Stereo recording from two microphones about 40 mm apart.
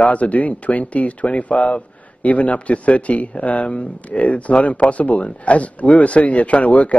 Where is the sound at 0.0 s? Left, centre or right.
Left.